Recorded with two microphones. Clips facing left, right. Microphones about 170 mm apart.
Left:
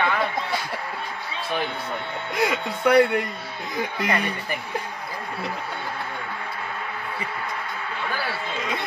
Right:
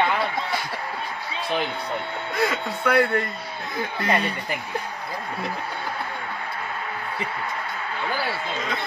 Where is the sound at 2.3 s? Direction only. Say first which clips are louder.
Left 1 dB; 15° left (ahead or behind).